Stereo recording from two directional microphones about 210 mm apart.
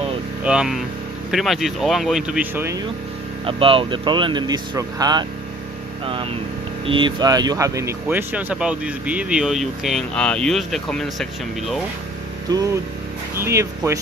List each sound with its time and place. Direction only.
0.4 s speech: 5° right (ahead or behind)
3.4 s speech: 25° right (ahead or behind)
6.9 s speech: 25° right (ahead or behind); by 11.8 s centre (ahead or behind)
13.4 s speech: 15° right (ahead or behind)